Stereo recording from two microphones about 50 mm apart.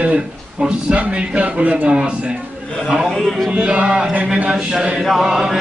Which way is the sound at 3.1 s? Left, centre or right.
Centre.